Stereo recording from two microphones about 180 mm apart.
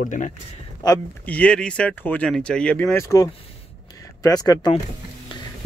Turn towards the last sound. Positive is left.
turn(degrees=25)  # may be behind; listen again after turning